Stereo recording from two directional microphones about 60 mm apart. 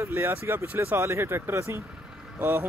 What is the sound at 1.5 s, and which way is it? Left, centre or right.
Speech, right.